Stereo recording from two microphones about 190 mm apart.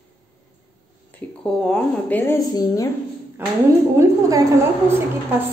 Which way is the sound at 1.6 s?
5° left (ahead or behind).